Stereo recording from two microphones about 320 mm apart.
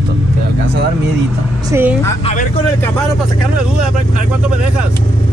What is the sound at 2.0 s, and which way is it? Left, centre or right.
Speech, left.